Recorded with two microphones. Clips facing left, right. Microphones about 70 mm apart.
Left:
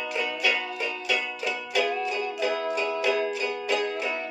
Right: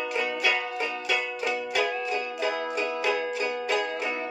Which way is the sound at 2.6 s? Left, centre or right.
Centre.